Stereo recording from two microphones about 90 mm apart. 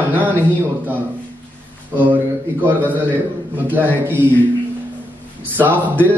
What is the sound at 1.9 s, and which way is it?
A man's voice, 20° right (ahead or behind).